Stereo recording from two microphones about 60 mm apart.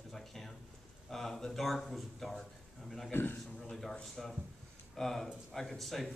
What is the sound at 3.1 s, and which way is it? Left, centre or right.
Speech, left.